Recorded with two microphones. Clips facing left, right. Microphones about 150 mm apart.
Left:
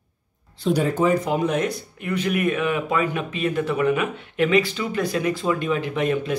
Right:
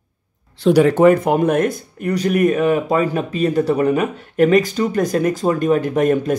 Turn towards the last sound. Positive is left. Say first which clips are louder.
# right 7 dB
turn(degrees=-45)  # may be behind; listen again after turning